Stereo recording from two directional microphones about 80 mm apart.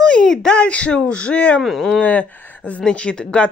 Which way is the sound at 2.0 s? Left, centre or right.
Centre.